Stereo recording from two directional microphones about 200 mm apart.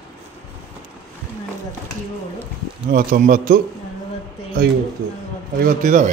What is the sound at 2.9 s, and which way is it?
Speech, 45° right (ahead or behind).